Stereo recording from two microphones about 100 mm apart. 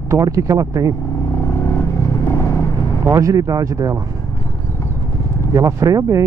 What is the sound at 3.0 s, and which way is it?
Speech, 35° right (ahead or behind).